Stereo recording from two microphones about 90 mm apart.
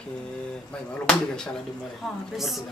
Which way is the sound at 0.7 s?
10° left (ahead or behind).